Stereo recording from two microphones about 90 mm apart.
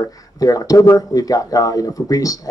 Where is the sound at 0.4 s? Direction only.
40° left (ahead or behind).